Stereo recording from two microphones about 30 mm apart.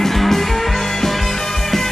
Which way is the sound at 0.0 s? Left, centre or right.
Centre.